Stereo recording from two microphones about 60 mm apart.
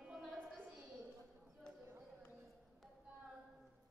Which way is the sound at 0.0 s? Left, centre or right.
Centre.